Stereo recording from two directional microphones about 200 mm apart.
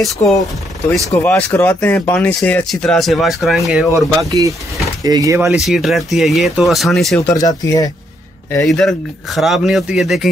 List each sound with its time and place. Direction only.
0.2 s speech: 10° left (ahead or behind)
3.9 s speech: 15° right (ahead or behind)
5.6 s speech: centre (ahead or behind)
7.2 s speech: 15° left (ahead or behind)
8.6 s speech: centre (ahead or behind)